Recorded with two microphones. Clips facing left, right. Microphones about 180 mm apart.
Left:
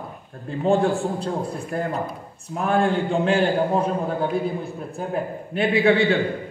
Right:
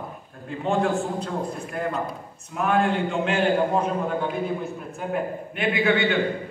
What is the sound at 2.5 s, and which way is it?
A man's voice, 35° left (ahead or behind).